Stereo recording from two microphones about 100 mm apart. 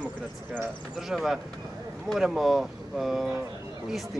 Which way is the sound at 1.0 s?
5° right (ahead or behind).